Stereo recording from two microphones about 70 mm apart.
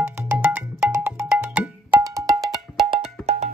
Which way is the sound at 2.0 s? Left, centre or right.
Right.